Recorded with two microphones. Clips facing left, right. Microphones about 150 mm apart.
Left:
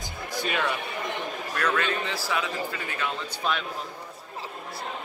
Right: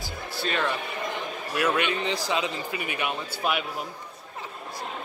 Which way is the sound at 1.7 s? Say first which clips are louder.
Right 1 dB; 20° right (ahead or behind).